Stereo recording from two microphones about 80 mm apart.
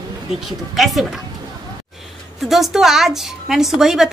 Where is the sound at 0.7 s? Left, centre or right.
Centre.